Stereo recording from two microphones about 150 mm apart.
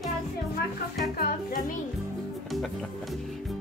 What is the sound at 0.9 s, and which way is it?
Speech, 80° left.